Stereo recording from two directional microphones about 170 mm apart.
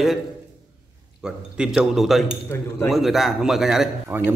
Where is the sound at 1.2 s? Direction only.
5° right (ahead or behind).